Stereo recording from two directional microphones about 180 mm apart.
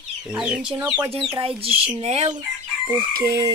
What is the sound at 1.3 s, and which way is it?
Speech, 30° right (ahead or behind).